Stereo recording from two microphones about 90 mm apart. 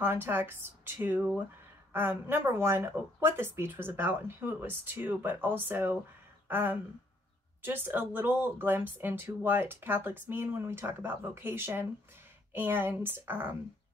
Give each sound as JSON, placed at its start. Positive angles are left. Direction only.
{"t": 0.0, "sound": "speech", "side_deg": -25}